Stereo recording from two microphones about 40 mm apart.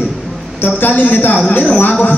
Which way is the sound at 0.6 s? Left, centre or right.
Left.